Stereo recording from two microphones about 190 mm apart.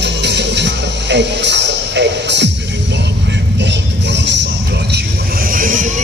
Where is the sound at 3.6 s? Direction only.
65° right (ahead or behind).